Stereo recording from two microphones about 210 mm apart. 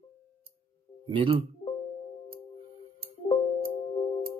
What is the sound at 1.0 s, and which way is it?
Speech, 25° right (ahead or behind).